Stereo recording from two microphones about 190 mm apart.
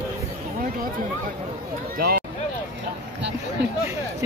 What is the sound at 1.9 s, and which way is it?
Run, 55° right (ahead or behind).